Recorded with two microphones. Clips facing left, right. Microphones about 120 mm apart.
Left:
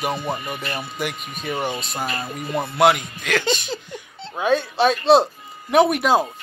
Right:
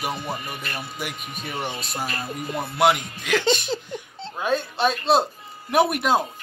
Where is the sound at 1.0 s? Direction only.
5° right (ahead or behind).